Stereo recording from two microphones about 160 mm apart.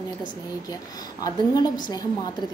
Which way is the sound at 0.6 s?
25° left (ahead or behind).